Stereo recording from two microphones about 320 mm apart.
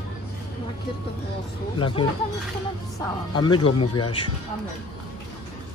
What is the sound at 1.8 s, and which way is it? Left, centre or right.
Speech, centre.